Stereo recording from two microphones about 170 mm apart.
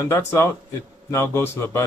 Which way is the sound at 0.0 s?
15° left (ahead or behind).